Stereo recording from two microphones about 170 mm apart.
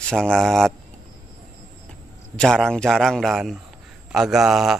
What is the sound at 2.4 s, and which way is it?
Speech, 5° left (ahead or behind).